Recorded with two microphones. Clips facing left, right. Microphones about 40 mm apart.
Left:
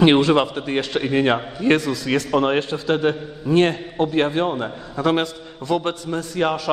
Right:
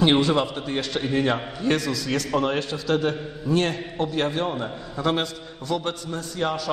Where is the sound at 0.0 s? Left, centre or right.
Left.